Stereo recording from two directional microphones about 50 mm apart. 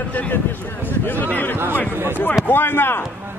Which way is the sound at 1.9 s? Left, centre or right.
Right.